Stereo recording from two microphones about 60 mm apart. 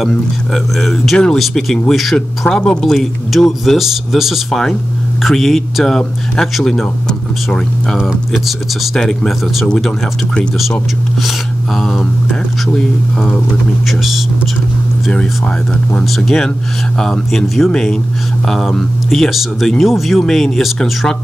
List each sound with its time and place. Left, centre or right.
0.1 s speech: centre
8.3 s speech: centre
11.2 s speech: centre
13.8 s speech: centre
15.1 s speech: centre